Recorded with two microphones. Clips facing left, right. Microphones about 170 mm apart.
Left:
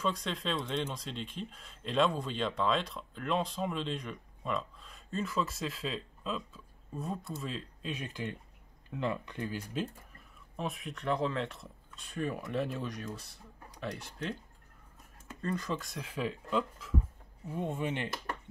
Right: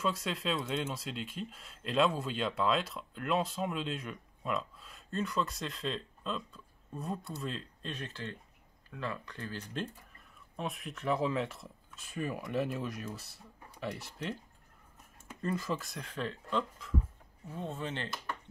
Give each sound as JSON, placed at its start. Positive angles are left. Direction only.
{"t": 0.0, "sound": "speech", "side_deg": -5}
{"t": 10.5, "sound": "speech", "side_deg": 0}
{"t": 15.4, "sound": "speech", "side_deg": -5}
{"t": 17.5, "sound": "speech", "side_deg": 15}